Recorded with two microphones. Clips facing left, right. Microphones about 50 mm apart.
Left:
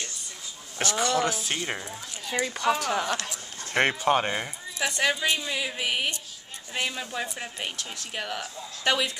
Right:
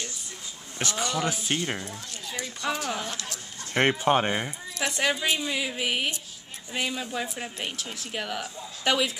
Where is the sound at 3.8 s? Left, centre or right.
Centre.